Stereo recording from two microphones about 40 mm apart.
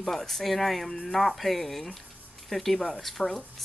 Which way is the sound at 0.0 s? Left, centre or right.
Centre.